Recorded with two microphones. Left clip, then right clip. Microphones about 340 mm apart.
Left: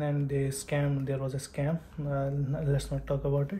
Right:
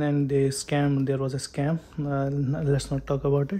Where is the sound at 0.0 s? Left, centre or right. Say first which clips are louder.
Right 8 dB; right.